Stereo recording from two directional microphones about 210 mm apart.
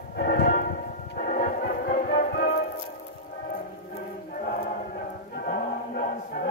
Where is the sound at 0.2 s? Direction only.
45° left (ahead or behind).